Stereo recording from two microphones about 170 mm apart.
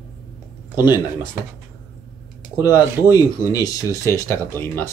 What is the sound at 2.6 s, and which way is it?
Speech, 20° left (ahead or behind).